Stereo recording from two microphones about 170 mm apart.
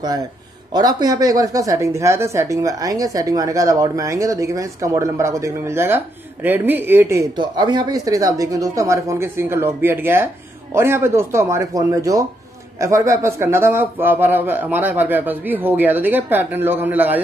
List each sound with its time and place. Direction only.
0.7 s a man's voice: 25° right (ahead or behind)